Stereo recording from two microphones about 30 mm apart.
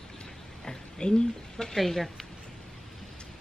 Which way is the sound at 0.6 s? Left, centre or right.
Left.